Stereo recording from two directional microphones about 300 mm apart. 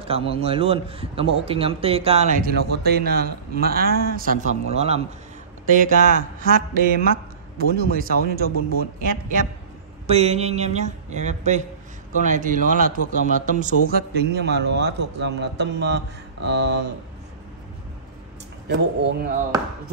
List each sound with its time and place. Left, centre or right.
0.0 s a man's voice: centre
7.5 s a man's voice: right
18.7 s a man's voice: right